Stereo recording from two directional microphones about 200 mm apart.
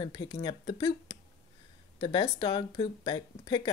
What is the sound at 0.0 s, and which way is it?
Speech, 20° left (ahead or behind).